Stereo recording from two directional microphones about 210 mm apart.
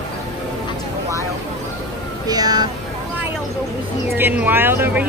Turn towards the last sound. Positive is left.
turn(degrees=-10)  # may be behind; listen again after turning